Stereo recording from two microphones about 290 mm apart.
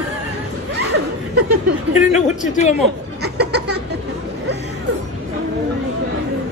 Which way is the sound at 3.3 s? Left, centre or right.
Right.